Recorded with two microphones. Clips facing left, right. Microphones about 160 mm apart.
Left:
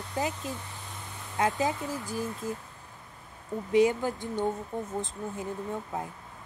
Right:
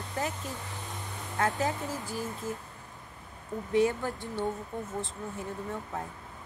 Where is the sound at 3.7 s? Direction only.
15° left (ahead or behind).